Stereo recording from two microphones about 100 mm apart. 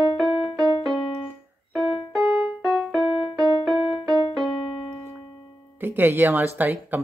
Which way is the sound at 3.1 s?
90° left.